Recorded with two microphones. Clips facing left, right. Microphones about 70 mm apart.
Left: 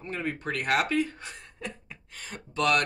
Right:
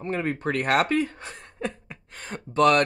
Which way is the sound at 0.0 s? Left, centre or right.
Right.